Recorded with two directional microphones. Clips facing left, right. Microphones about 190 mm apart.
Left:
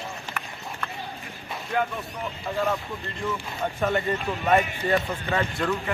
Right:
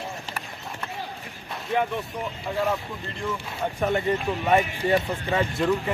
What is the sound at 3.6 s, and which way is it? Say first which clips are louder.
Speech: right 1 dB; 5° right (ahead or behind).